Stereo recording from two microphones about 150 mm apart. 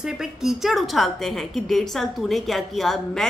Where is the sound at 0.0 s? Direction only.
5° right (ahead or behind).